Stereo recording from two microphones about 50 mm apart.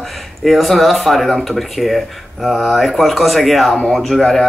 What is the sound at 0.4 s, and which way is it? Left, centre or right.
Speech, centre.